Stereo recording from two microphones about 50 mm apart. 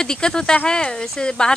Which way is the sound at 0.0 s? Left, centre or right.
Centre.